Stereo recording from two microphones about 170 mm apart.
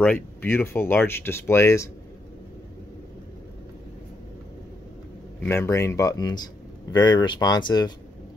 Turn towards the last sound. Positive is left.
turn(degrees=25)  # may be behind; listen again after turning